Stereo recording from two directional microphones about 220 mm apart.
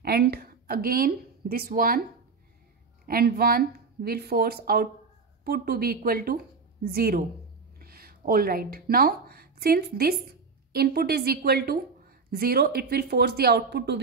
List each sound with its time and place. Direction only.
0.0 s a woman's voice: 45° right (ahead or behind)
3.1 s a woman's voice: 45° right (ahead or behind)